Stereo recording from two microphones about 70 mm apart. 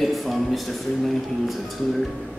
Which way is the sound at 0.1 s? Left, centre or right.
Centre.